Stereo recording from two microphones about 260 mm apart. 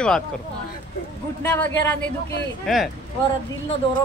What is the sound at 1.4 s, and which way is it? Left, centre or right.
A woman's voice, centre.